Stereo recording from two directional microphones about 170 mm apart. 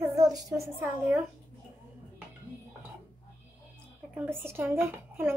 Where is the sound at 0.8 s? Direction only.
10° right (ahead or behind).